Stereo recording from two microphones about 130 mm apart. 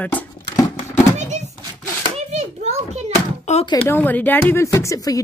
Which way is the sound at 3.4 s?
60° left (ahead or behind).